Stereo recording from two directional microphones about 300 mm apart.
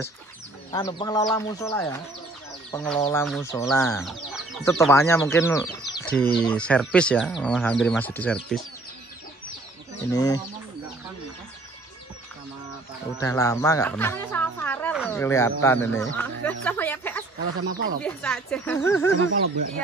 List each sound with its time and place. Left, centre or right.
0.7 s speech: centre
10.1 s speech: centre
13.2 s speech: centre
17.7 s speech: right
18.0 s speech: centre
19.2 s speech: right